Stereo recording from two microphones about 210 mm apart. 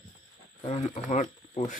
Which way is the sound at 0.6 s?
30° left (ahead or behind).